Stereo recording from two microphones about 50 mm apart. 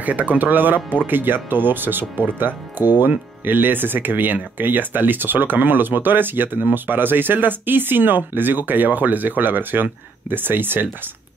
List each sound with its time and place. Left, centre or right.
0.0 s speech: right